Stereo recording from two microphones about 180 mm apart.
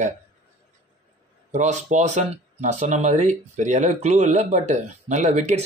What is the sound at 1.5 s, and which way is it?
Speech, 40° right (ahead or behind).